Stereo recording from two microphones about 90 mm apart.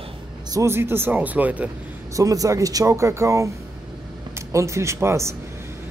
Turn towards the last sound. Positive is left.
turn(degrees=-30)  # may be behind; listen again after turning